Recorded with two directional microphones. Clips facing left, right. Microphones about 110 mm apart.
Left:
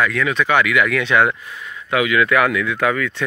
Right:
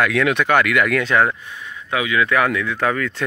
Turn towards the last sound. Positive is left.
turn(degrees=-35)  # may be behind; listen again after turning